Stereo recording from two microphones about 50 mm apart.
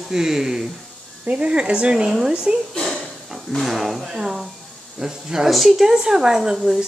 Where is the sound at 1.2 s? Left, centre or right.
Right.